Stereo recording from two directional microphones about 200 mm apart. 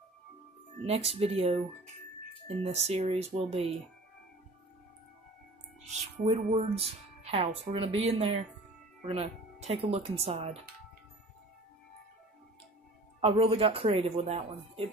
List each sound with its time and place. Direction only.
0.8 s speech: 30° right (ahead or behind)
5.9 s speech: 35° right (ahead or behind)
13.2 s speech: 30° right (ahead or behind)